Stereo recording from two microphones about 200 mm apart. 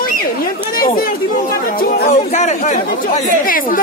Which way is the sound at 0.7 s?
45° left (ahead or behind).